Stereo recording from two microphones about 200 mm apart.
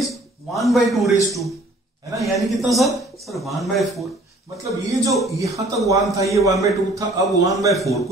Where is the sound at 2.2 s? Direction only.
Centre (ahead or behind).